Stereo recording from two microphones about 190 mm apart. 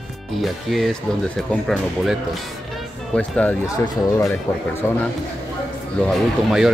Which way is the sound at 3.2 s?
5° left (ahead or behind).